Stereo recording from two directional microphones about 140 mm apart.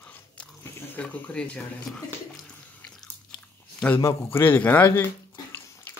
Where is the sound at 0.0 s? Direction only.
10° left (ahead or behind).